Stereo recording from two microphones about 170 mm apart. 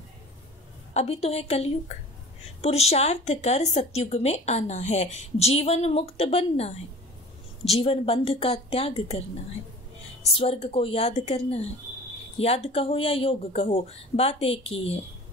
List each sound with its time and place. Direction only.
0.9 s speech: 40° left (ahead or behind)
10.3 s speech: 35° left (ahead or behind)